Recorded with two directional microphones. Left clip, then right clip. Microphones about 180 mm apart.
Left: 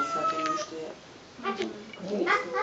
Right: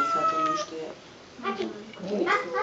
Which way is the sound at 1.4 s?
10° right (ahead or behind).